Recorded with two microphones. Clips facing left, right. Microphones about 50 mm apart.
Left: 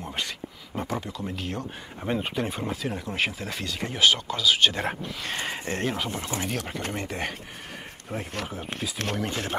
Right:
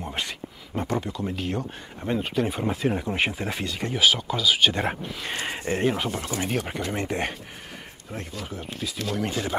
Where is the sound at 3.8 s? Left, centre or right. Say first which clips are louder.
Even; centre.